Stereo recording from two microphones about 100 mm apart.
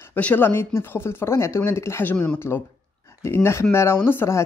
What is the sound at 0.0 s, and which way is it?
Speech, 15° left (ahead or behind).